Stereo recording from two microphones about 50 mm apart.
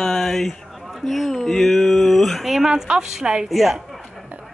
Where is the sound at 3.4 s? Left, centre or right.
Centre.